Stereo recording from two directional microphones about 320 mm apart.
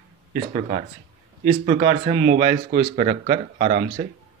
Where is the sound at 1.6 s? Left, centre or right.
Centre.